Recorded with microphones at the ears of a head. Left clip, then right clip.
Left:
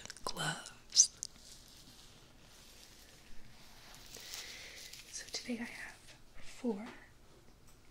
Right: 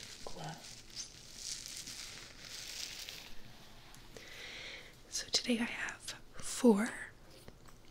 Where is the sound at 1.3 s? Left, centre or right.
Right.